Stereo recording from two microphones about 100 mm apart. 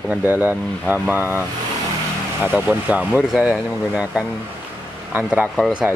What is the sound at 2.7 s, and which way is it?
Speech, 15° right (ahead or behind).